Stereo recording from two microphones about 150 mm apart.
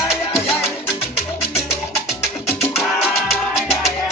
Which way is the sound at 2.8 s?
Centre (ahead or behind).